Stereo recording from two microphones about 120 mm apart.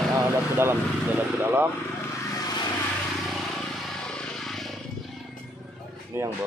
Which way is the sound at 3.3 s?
Centre (ahead or behind).